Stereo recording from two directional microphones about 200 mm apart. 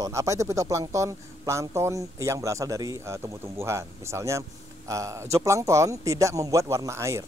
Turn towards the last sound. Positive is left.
turn(degrees=-15)  # may be behind; listen again after turning